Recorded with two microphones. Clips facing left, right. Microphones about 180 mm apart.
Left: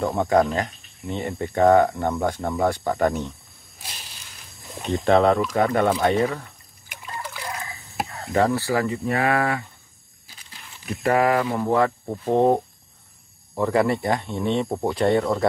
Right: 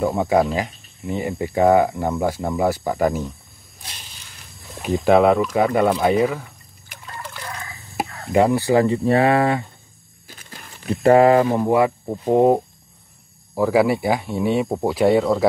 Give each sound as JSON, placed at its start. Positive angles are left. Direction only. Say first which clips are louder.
{"t": 0.0, "sound": "speech", "louder": "right 2 dB", "side_deg": -5}
{"t": 4.7, "sound": "speech", "louder": "right 3 dB", "side_deg": -5}
{"t": 7.1, "sound": "trickle", "louder": "left 1 dB", "side_deg": 10}
{"t": 8.3, "sound": "speech", "louder": "right 5 dB", "side_deg": -15}
{"t": 10.2, "sound": "a sound", "louder": "right 6 dB", "side_deg": -50}
{"t": 10.9, "sound": "speech", "louder": "right 7 dB", "side_deg": -30}
{"t": 11.5, "sound": "speech", "louder": "right 3 dB", "side_deg": -15}